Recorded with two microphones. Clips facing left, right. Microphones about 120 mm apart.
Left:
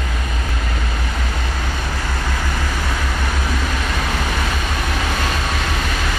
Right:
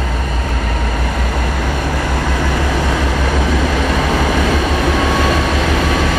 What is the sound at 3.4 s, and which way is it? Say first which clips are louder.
Vehicle: right 8 dB; 90° right.